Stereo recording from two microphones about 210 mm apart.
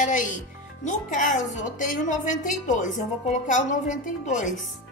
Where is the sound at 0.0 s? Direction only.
35° left (ahead or behind).